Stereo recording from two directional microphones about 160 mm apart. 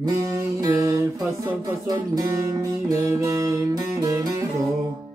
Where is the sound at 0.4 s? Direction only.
20° right (ahead or behind).